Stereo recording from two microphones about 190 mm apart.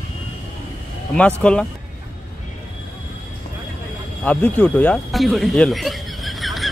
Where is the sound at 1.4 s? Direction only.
5° left (ahead or behind).